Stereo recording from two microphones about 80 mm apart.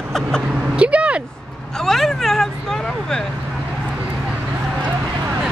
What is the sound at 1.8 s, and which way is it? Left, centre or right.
Vehicle, centre.